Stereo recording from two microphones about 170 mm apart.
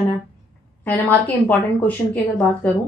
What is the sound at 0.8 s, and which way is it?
A woman's voice, 10° left (ahead or behind).